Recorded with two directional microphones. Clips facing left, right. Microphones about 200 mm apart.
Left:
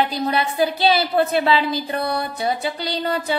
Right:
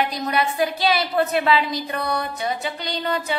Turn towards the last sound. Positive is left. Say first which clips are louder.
# left 2 dB
turn(degrees=35)  # may be behind; listen again after turning